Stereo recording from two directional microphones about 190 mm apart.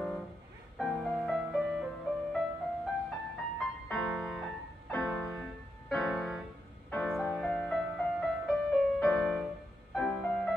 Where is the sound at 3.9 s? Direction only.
Centre (ahead or behind).